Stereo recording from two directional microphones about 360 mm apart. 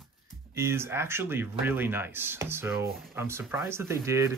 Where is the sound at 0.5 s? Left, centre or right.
Centre.